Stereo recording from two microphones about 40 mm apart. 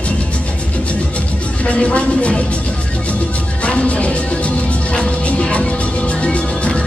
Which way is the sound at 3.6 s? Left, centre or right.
Left.